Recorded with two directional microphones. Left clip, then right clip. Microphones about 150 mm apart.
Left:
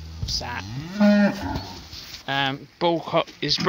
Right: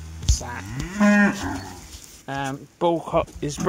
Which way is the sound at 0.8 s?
65° left (ahead or behind).